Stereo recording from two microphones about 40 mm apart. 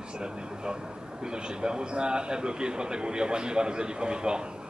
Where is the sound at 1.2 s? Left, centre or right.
Right.